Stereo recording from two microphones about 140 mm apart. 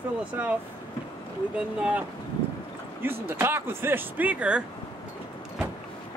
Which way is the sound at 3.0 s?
15° right (ahead or behind).